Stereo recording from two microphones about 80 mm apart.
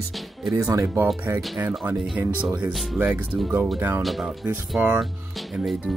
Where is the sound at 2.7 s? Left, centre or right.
Centre.